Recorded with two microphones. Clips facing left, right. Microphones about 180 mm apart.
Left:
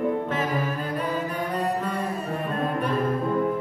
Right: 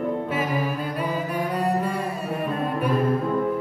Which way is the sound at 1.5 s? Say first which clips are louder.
Right 2 dB; 10° right (ahead or behind).